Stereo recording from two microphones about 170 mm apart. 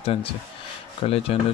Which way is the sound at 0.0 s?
35° left (ahead or behind).